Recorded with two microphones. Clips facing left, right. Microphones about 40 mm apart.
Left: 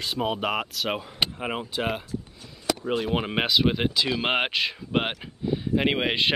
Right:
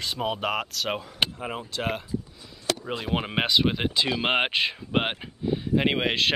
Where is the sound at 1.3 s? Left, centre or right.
Left.